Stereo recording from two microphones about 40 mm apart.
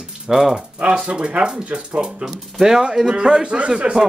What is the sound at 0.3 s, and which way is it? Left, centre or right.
Speech, centre.